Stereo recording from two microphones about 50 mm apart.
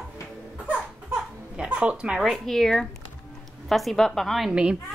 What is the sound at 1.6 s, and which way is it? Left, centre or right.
Speech, right.